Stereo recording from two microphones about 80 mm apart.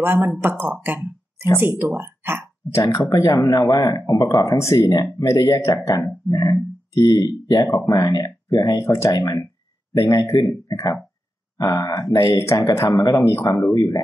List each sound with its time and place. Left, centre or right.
0.0 s speech: right
2.7 s speech: left
7.6 s speech: left
8.7 s speech: left
10.7 s speech: left